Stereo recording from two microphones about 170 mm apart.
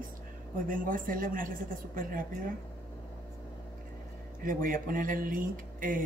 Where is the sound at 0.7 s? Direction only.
55° right (ahead or behind).